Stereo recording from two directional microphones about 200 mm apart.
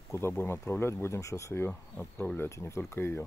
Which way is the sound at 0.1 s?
10° left (ahead or behind).